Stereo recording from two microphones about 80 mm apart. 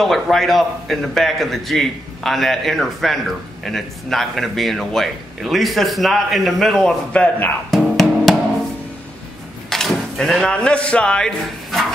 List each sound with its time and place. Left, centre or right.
0.0 s a man's voice: centre
7.7 s music: centre
9.7 s a sound: centre
10.5 s speech: centre